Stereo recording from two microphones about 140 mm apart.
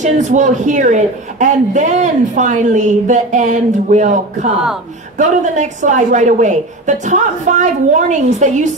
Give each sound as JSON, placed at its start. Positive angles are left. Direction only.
{"t": 0.0, "sound": "a woman's voice", "side_deg": -60}